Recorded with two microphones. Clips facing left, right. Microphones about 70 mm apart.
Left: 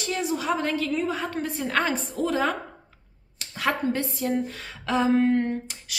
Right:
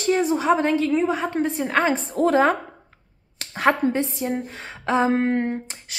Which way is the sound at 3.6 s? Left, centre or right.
Right.